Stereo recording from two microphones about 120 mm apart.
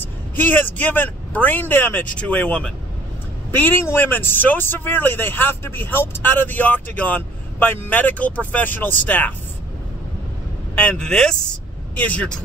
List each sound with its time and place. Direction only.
0.0 s speech: 15° left (ahead or behind)
10.8 s speech: 10° left (ahead or behind)